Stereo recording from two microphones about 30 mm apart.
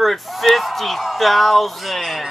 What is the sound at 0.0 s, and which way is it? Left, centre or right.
Speech, centre.